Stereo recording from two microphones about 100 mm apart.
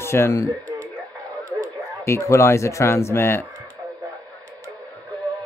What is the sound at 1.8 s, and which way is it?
Speech, 30° left (ahead or behind).